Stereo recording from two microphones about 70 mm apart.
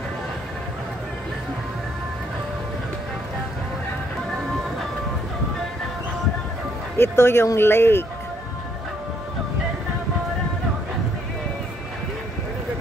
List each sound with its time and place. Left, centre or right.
7.0 s speech: left